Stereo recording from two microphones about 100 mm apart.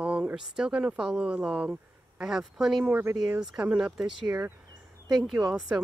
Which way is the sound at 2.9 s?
20° right (ahead or behind).